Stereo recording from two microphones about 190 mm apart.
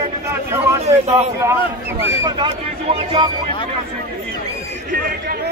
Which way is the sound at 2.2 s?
20° right (ahead or behind).